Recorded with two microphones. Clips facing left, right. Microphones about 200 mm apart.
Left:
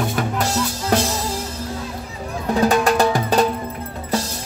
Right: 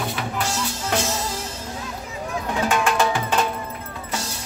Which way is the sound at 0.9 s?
40° left (ahead or behind).